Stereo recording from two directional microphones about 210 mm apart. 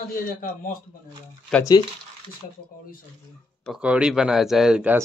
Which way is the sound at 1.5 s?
5° left (ahead or behind).